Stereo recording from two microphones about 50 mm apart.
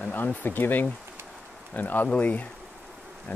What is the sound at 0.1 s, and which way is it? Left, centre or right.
Speech, left.